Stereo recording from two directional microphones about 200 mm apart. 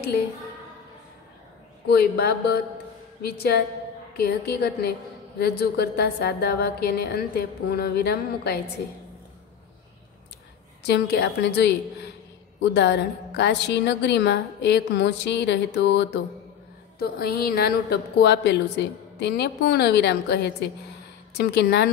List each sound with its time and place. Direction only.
1.9 s a woman's voice: 55° left (ahead or behind)
10.9 s a woman's voice: 60° left (ahead or behind)
17.0 s a woman's voice: 50° left (ahead or behind)